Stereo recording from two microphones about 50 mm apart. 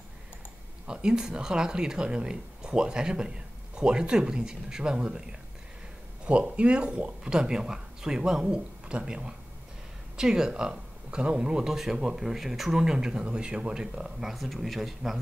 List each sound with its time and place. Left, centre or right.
0.8 s speech: centre
14.3 s speech: centre